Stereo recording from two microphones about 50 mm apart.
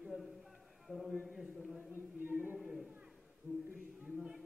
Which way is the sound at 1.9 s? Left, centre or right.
Right.